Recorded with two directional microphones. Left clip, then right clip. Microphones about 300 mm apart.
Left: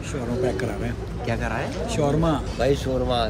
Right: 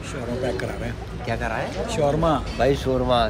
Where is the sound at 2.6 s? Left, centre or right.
Centre.